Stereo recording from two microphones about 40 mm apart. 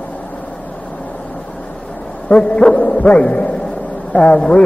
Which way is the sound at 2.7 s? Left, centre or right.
Left.